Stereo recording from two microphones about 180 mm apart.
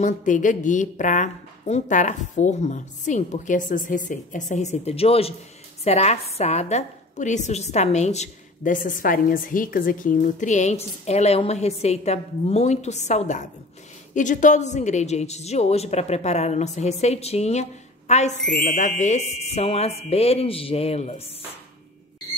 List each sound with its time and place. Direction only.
0.0 s a woman's voice: 45° left (ahead or behind)